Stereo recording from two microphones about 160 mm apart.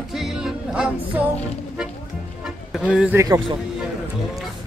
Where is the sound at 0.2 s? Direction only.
5° right (ahead or behind).